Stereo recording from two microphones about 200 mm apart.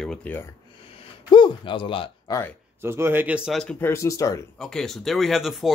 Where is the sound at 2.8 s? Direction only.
10° right (ahead or behind); by 4.4 s 15° left (ahead or behind).